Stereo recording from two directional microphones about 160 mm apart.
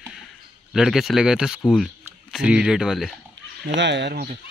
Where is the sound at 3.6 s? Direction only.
90° right.